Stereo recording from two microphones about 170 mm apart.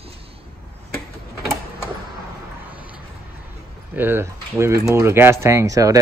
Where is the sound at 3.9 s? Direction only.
10° right (ahead or behind).